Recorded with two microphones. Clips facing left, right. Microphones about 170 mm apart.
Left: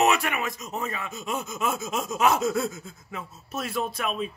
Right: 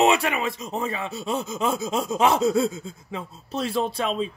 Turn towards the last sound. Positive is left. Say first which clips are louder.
# right 4 dB
turn(degrees=-30)  # may be behind; listen again after turning